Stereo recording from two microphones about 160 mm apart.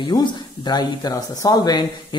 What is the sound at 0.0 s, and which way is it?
Speech, 30° left (ahead or behind).